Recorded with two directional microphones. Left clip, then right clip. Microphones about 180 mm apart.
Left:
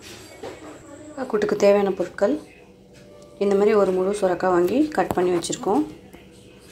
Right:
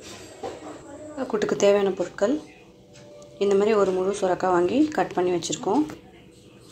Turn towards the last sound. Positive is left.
turn(degrees=5)  # may be behind; listen again after turning